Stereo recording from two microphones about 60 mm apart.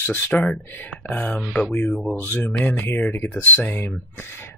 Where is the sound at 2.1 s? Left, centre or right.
Left.